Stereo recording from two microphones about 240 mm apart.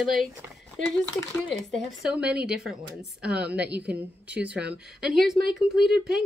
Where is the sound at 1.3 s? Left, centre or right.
Centre.